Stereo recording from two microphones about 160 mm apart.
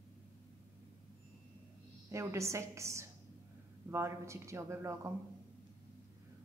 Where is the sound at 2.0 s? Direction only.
20° right (ahead or behind).